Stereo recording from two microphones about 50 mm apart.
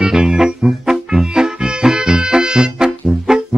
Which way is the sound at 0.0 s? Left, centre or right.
Centre.